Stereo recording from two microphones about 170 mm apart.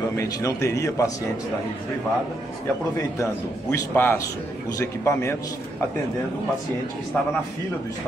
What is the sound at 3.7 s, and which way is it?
A man's voice, 15° left (ahead or behind).